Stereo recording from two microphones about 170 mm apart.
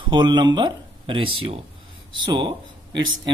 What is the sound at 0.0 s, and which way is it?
Speech, 25° right (ahead or behind).